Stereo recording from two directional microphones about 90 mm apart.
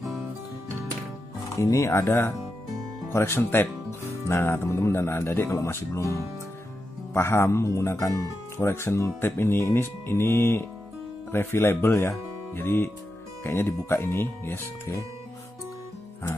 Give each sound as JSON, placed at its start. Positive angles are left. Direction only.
{"t": 1.5, "sound": "speech", "side_deg": 35}
{"t": 7.2, "sound": "speech", "side_deg": 30}